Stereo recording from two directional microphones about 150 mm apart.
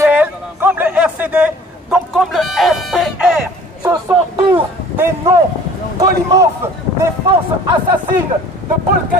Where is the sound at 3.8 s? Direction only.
20° right (ahead or behind).